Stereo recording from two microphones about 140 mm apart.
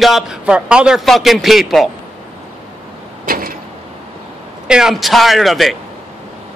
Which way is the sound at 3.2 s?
90° right.